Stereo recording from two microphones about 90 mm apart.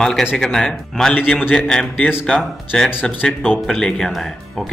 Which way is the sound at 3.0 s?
5° left (ahead or behind).